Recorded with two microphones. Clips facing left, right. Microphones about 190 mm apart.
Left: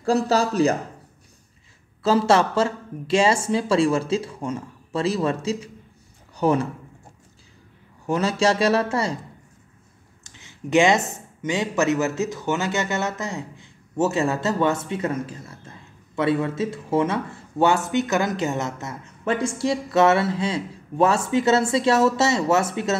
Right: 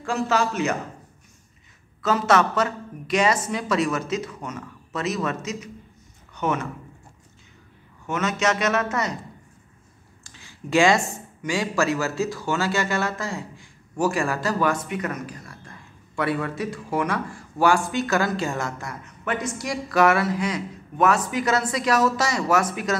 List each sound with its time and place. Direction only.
0.0 s speech: 35° left (ahead or behind)
2.0 s speech: 30° left (ahead or behind)
8.1 s speech: 30° left (ahead or behind)
10.2 s a sound: 20° left (ahead or behind)
11.4 s speech: 20° left (ahead or behind)